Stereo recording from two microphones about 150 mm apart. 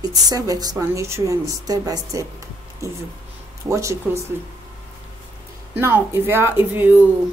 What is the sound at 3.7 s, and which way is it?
Speech, 20° right (ahead or behind).